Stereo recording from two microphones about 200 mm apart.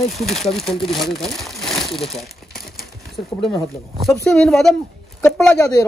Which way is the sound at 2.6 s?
Centre (ahead or behind).